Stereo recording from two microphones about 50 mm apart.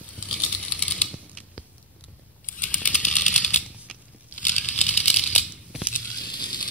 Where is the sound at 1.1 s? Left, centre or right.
Centre.